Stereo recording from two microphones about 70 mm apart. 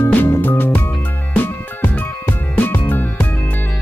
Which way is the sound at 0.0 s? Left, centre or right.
Left.